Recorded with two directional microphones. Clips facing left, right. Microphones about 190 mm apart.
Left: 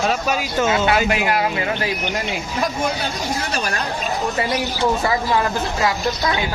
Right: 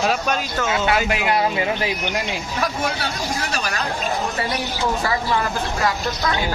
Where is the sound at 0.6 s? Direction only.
20° left (ahead or behind).